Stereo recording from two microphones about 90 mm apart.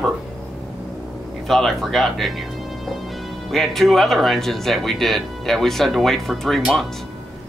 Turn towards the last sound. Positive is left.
turn(degrees=0)  # may be behind; listen again after turning